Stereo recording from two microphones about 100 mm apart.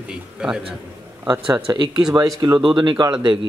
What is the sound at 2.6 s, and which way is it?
Speech, 55° right (ahead or behind).